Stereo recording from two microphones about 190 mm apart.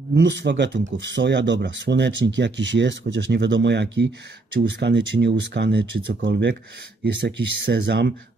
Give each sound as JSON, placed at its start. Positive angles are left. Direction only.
{"t": 0.1, "sound": "speech", "side_deg": -65}